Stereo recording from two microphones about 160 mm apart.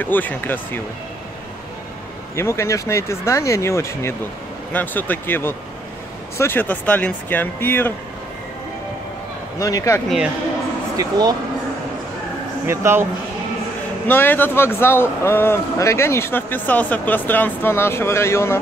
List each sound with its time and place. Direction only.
0.0 s speech: 10° left (ahead or behind)
2.3 s speech: 15° left (ahead or behind)
9.6 s speech: 20° left (ahead or behind)
10.0 s speech: 5° right (ahead or behind)
11.0 s speech: 25° right (ahead or behind)
12.6 s speech: 15° right (ahead or behind)
14.0 s speech: 15° left (ahead or behind)